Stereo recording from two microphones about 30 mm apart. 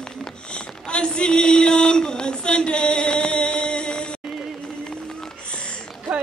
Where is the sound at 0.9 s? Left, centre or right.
Left.